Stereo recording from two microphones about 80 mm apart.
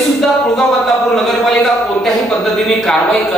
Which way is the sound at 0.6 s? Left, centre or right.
Centre.